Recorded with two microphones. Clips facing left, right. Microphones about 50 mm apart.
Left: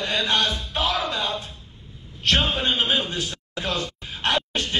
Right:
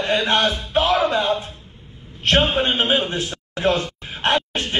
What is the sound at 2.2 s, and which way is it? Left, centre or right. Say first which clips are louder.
A man's voice: right 4 dB; right.